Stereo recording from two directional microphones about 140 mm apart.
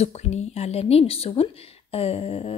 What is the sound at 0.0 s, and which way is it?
A woman's voice, 50° left (ahead or behind).